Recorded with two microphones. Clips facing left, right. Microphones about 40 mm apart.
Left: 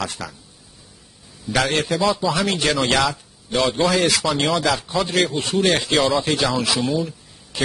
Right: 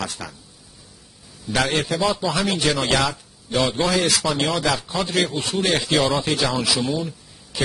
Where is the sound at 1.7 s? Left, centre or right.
Left.